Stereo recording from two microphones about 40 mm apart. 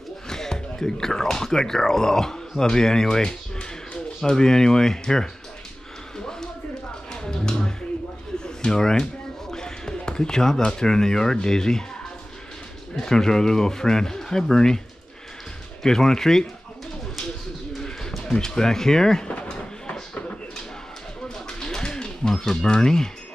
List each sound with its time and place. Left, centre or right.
0.3 s speech: centre
6.1 s a sound: centre
7.1 s music: centre
8.5 s speech: centre
9.5 s basketball bounce: centre
10.7 s speech: centre
12.9 s speech: centre
15.8 s speech: centre
17.7 s pigeon: centre
18.3 s speech: centre
21.5 s a sound: centre